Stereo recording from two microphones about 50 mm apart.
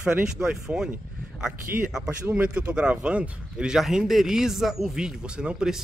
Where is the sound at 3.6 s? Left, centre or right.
Centre.